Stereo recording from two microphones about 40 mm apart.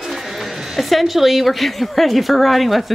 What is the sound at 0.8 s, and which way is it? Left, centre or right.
Speech, centre.